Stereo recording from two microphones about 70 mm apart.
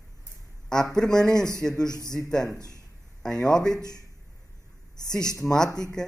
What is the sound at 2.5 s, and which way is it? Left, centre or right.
Speech, left.